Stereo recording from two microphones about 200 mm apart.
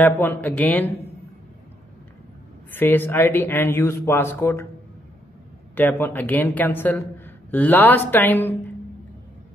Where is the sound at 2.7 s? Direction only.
10° left (ahead or behind).